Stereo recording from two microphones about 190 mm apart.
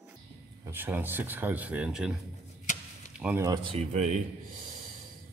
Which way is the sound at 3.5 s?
30° right (ahead or behind).